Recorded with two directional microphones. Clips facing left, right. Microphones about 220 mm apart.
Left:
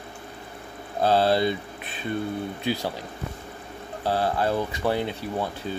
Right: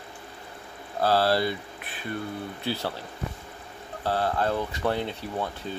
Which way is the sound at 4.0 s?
10° left (ahead or behind).